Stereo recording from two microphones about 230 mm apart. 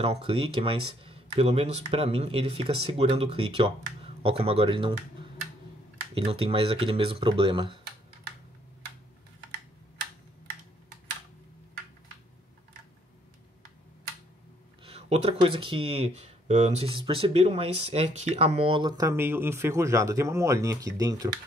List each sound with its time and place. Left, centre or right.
0.0 s speech: right
14.8 s speech: right